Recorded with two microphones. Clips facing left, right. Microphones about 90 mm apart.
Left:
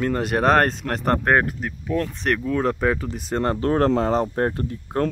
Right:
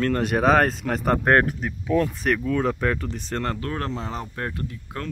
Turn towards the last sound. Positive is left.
turn(degrees=35)  # may be behind; listen again after turning